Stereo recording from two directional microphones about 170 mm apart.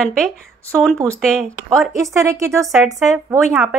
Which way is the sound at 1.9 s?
15° right (ahead or behind).